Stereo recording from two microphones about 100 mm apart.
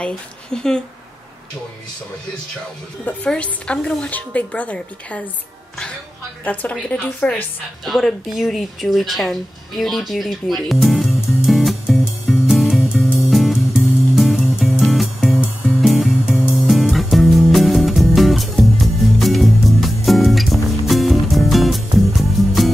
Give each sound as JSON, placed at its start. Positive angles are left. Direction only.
{"t": 0.0, "sound": "a woman's voice", "side_deg": 5}
{"t": 3.1, "sound": "a woman's voice", "side_deg": 10}
{"t": 6.4, "sound": "a woman's voice", "side_deg": 15}
{"t": 7.8, "sound": "speech", "side_deg": 0}
{"t": 11.1, "sound": "music", "side_deg": -5}